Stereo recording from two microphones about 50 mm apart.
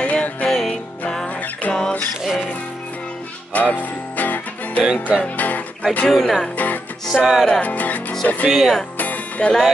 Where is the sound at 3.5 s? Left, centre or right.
Left.